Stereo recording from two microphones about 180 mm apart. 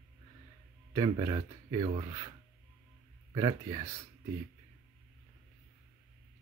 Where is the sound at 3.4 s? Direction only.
20° right (ahead or behind).